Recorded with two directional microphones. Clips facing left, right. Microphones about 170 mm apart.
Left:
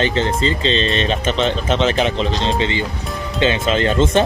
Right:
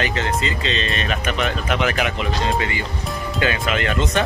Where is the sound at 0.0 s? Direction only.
30° left (ahead or behind).